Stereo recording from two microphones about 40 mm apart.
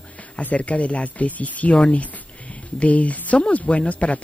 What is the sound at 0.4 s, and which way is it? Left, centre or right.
A woman's voice, left.